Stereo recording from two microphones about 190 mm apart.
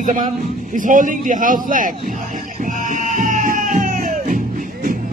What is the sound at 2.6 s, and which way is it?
Music, 40° right (ahead or behind).